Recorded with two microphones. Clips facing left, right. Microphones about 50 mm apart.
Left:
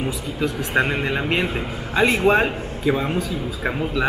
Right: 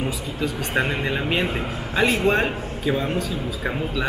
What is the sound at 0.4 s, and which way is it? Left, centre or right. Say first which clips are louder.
Speech: left 3 dB; centre.